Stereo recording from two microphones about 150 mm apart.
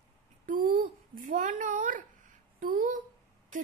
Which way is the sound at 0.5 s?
65° right (ahead or behind).